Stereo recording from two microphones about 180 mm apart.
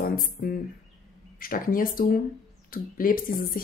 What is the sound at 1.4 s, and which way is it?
Speech, 50° left (ahead or behind).